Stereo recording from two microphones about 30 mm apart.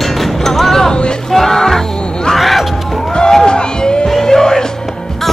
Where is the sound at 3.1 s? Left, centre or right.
Left.